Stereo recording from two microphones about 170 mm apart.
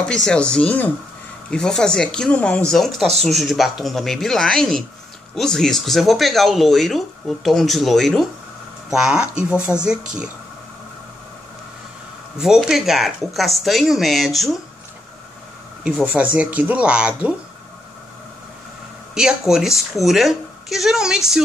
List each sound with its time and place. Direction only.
0.1 s speech: 5° left (ahead or behind)
12.4 s speech: 5° right (ahead or behind)
15.8 s speech: 10° right (ahead or behind)
19.1 s speech: 5° right (ahead or behind)